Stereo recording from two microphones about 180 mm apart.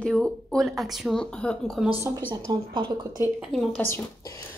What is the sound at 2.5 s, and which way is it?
Speech, 25° right (ahead or behind).